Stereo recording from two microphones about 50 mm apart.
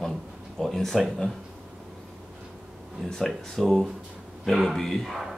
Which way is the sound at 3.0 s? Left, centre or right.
Centre.